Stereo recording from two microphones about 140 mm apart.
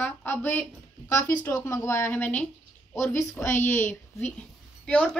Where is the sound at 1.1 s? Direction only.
25° left (ahead or behind).